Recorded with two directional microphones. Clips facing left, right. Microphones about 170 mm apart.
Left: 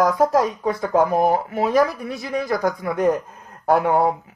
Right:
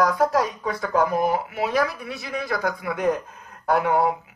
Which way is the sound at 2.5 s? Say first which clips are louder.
Left 3 dB; 45° left (ahead or behind).